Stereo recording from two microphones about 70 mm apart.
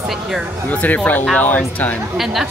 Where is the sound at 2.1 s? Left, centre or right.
Centre.